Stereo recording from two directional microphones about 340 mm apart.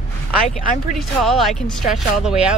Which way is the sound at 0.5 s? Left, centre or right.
Centre.